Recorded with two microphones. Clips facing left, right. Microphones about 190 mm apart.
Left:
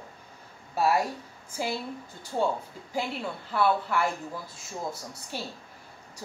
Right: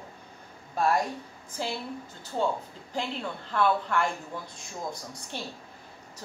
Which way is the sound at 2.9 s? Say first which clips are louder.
Left 1 dB; 10° left (ahead or behind).